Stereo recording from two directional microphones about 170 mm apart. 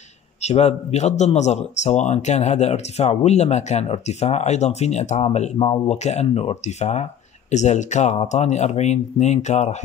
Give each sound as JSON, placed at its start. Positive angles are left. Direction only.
{"t": 0.4, "sound": "speech", "side_deg": 40}